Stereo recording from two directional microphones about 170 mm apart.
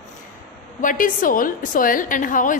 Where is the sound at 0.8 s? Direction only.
50° left (ahead or behind).